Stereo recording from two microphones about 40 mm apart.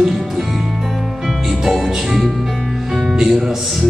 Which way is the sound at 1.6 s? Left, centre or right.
Centre.